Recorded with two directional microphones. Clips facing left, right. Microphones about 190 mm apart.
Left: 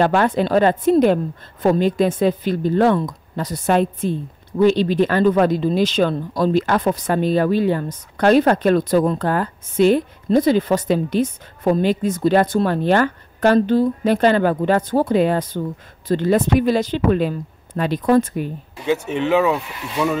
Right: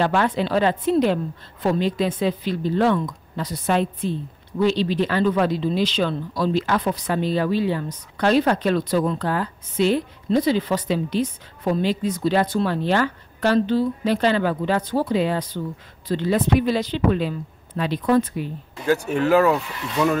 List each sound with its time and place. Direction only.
0.0 s a woman's voice: 50° left (ahead or behind)
18.9 s speech: centre (ahead or behind)